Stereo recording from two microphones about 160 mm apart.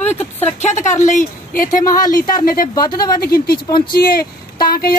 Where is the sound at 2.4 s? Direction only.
60° left (ahead or behind).